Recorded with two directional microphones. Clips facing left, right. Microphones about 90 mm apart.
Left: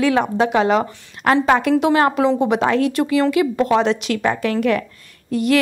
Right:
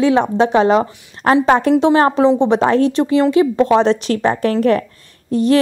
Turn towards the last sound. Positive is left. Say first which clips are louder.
# right 4 dB
turn(degrees=-35)  # may be behind; listen again after turning